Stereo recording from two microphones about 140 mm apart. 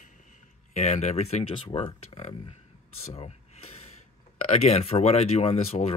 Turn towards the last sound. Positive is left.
turn(degrees=50)  # may be behind; listen again after turning